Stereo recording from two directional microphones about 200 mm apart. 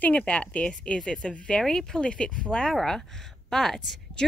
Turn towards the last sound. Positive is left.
turn(degrees=0)  # may be behind; listen again after turning